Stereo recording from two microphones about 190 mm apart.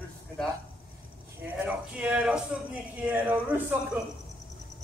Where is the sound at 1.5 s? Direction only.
5° right (ahead or behind).